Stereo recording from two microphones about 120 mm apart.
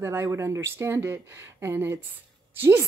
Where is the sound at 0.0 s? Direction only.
25° right (ahead or behind).